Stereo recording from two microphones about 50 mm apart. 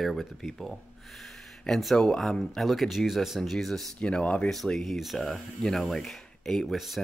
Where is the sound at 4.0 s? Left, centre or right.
Left.